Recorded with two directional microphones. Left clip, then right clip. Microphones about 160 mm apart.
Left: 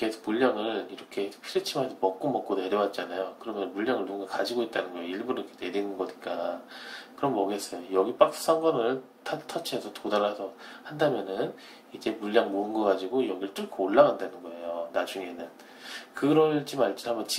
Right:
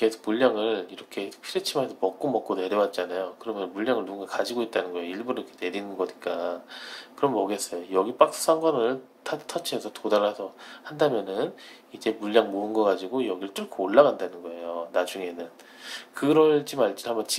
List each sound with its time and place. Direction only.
0.0 s speech: 40° right (ahead or behind)